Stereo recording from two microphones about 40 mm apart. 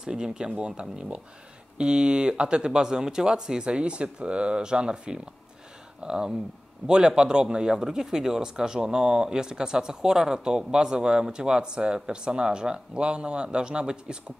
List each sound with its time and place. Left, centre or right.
0.0 s speech: centre